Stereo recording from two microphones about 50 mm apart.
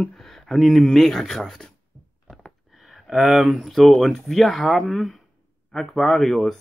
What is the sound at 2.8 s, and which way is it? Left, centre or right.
A man's voice, centre.